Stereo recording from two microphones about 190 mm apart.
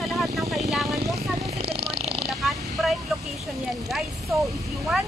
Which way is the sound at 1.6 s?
30° right (ahead or behind).